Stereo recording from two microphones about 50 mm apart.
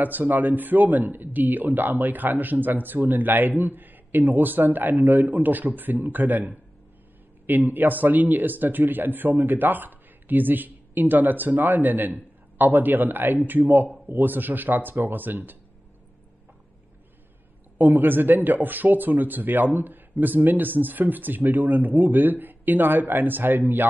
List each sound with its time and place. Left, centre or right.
0.0 s speech: right
17.7 s speech: right